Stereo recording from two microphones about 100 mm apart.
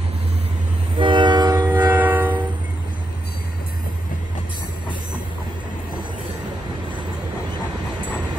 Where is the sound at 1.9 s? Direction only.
20° right (ahead or behind).